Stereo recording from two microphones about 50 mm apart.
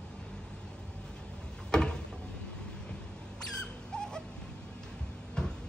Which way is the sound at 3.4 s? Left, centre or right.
Centre.